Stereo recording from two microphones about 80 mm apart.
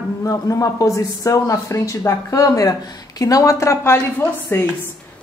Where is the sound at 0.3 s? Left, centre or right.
Left.